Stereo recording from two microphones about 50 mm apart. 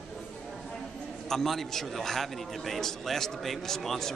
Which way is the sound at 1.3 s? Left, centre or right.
Centre.